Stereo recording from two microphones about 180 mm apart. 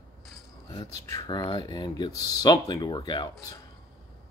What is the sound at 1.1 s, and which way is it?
Speech, 20° left (ahead or behind).